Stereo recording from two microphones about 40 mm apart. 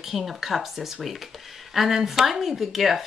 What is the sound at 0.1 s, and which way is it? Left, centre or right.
Speech, centre.